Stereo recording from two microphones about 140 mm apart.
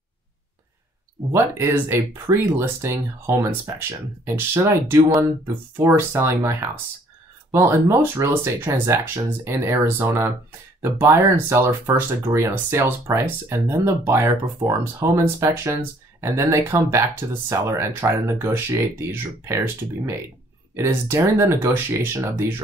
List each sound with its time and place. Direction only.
1.3 s speech: 15° right (ahead or behind)